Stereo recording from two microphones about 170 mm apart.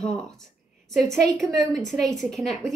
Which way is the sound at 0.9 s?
5° left (ahead or behind).